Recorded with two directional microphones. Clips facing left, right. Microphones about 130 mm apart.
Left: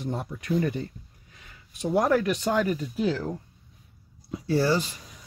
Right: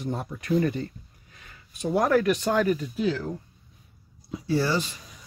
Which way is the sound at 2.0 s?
20° left (ahead or behind).